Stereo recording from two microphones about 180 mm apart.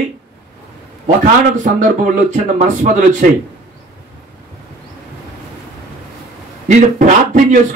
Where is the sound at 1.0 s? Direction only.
45° right (ahead or behind).